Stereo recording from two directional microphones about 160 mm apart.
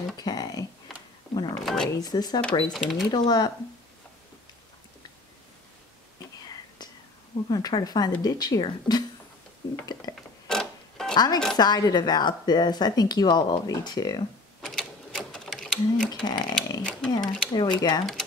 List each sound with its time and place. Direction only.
0.2 s speech: 25° left (ahead or behind)
1.3 s a sound: 30° left (ahead or behind)
1.6 s a sound: centre (ahead or behind)
2.0 s speech: 25° left (ahead or behind)
2.7 s speech: centre (ahead or behind)
3.1 s speech: 25° left (ahead or behind)
7.4 s speech: 25° left (ahead or behind)
10.1 s a sound: 25° left (ahead or behind)
10.5 s mechanisms: 5° left (ahead or behind)
11.1 s speech: 25° left (ahead or behind)
14.6 s a sound: centre (ahead or behind)
16.1 s speech: 25° left (ahead or behind)
17.2 s speech: 5° left (ahead or behind)
17.5 s speech: 25° left (ahead or behind)